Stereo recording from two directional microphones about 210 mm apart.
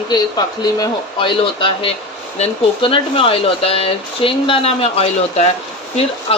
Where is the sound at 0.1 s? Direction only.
20° left (ahead or behind).